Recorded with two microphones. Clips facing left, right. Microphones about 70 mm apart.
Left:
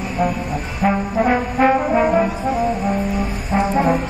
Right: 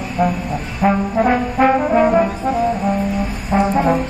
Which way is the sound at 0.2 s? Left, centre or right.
Right.